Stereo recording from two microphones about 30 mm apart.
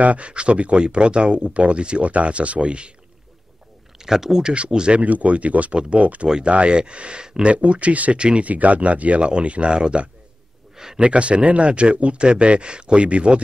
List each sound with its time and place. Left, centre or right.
0.0 s speech: right
0.3 s speech: right
4.0 s speech: centre
4.4 s speech: right
4.9 s speech: right
6.4 s speech: right
7.4 s speech: right
8.2 s speech: right
8.5 s speech: right
9.2 s speech: right